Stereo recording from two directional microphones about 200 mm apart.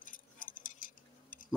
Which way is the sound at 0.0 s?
45° left (ahead or behind).